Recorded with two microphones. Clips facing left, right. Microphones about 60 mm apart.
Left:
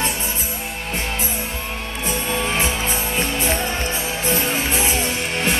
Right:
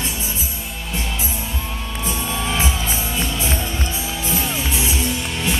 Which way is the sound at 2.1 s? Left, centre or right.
Left.